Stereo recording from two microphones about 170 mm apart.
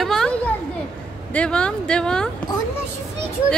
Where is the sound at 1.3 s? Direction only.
5° left (ahead or behind).